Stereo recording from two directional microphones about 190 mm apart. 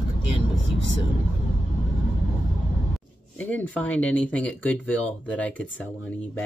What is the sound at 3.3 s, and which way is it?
Speech, 10° left (ahead or behind).